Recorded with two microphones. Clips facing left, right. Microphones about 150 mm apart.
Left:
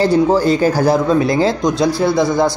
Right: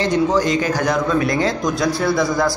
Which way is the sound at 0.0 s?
35° left (ahead or behind).